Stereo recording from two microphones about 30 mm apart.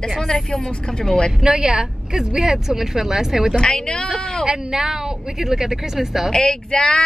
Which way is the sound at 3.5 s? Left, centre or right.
Left.